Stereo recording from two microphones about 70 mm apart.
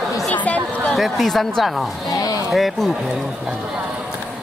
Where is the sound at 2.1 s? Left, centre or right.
Left.